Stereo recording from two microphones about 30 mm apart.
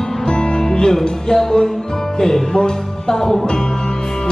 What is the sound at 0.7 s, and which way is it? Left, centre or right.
Music, left.